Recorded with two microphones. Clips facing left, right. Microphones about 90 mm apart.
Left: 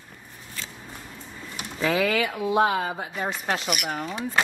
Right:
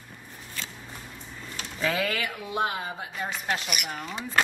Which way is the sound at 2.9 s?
40° left (ahead or behind).